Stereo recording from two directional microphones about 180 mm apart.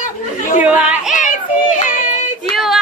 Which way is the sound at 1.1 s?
45° left (ahead or behind).